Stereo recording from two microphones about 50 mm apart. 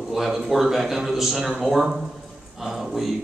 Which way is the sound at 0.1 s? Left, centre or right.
Centre.